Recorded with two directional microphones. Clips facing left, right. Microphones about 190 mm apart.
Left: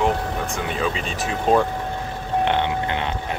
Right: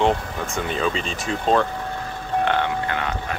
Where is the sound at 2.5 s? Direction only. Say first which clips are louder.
Left 1 dB; 20° left (ahead or behind).